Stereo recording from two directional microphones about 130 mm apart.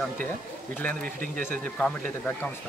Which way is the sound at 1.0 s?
85° right.